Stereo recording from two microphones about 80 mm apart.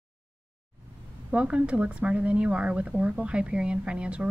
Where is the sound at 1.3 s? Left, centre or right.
Centre.